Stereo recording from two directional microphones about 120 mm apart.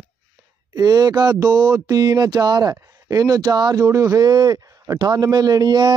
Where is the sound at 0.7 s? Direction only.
30° right (ahead or behind).